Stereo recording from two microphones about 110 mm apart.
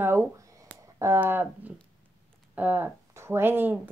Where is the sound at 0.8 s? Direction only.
25° right (ahead or behind).